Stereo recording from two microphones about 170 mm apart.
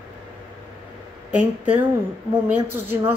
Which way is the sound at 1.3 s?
10° right (ahead or behind).